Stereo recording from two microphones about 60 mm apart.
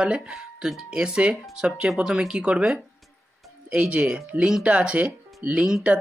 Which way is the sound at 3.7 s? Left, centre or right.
Centre.